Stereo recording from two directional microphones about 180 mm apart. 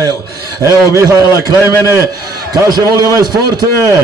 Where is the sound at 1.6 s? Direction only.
15° left (ahead or behind).